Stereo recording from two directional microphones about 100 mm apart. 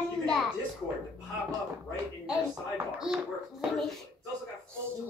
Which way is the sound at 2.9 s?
5° right (ahead or behind).